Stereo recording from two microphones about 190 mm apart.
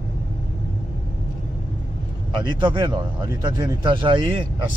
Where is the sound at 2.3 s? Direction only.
25° right (ahead or behind).